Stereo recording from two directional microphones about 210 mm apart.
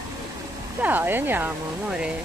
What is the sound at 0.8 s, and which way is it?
Speech, 10° right (ahead or behind).